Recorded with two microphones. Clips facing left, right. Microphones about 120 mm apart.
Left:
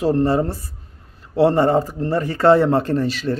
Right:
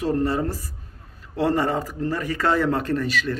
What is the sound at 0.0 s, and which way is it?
Speech, 30° left (ahead or behind).